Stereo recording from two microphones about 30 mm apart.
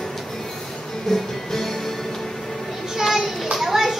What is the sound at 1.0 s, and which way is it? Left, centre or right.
Music, centre.